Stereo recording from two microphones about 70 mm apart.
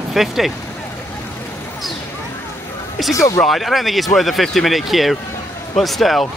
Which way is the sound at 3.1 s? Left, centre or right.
Left.